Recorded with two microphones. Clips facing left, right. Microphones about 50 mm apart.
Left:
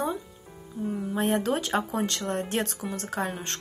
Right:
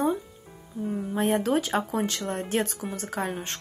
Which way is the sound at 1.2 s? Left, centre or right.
Left.